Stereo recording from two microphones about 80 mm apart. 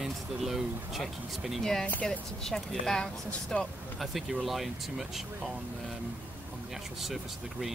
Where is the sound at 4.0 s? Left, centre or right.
Centre.